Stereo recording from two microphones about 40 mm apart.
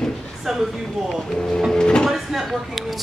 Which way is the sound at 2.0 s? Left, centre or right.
Centre.